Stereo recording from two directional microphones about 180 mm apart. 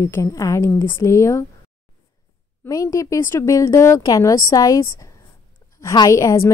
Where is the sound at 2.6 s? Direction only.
20° left (ahead or behind).